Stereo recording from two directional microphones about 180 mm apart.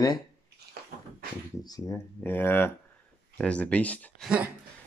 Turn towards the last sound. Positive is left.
turn(degrees=10)  # may be behind; listen again after turning